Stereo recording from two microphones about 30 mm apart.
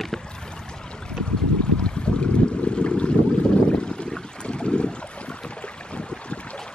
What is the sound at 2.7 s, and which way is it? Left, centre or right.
Boat, left.